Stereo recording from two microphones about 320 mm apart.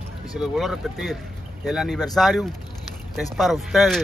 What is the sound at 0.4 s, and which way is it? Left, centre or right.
Speech, centre.